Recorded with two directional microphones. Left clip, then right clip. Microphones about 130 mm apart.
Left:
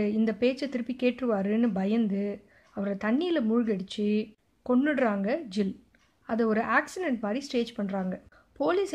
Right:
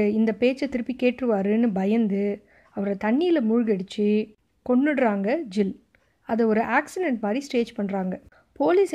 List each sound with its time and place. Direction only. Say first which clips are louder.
0.0 s speech: right 5 dB; 40° right (ahead or behind)